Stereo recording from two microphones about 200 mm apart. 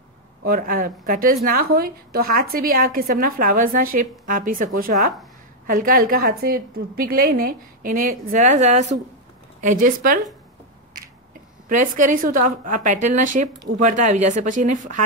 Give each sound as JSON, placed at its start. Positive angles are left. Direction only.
{"t": 0.4, "sound": "a woman's voice", "side_deg": -45}
{"t": 11.7, "sound": "a woman's voice", "side_deg": -40}